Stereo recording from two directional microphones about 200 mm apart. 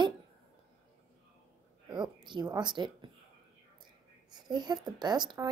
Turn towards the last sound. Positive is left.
turn(degrees=-20)  # may be behind; listen again after turning